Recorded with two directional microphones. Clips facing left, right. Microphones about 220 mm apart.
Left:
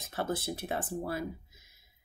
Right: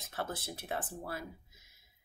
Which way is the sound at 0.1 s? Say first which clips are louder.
Left 6 dB; 15° left (ahead or behind).